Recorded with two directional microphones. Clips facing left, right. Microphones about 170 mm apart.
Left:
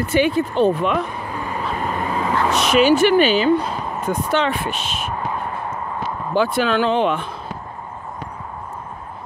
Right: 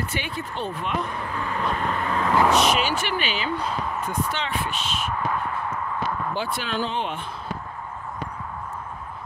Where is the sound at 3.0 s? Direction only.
40° left (ahead or behind).